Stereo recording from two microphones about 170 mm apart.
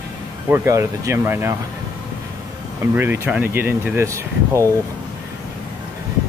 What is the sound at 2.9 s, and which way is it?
Speech, 15° right (ahead or behind).